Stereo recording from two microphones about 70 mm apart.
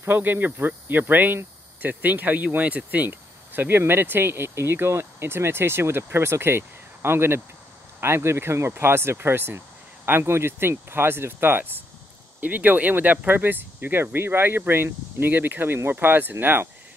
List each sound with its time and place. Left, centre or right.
0.0 s speech: right
3.1 s speech: right